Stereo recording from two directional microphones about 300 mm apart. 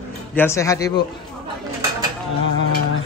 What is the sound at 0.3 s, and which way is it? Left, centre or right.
Speech, centre.